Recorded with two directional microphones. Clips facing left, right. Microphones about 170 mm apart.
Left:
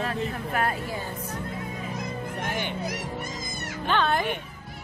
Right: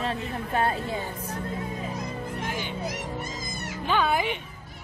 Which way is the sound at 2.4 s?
60° left (ahead or behind).